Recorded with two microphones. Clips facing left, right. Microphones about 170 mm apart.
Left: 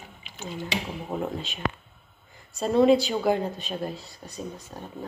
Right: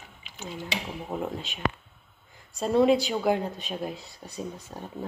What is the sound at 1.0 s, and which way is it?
Speech, centre (ahead or behind).